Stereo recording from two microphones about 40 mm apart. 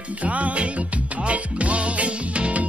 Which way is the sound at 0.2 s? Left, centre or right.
Right.